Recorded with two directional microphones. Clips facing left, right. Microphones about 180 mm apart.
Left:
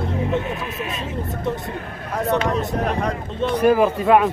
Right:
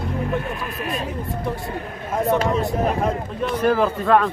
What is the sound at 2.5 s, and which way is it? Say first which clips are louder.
Speech: right 1 dB; centre (ahead or behind).